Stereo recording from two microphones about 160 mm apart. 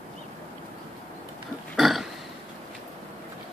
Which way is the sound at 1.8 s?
Centre (ahead or behind).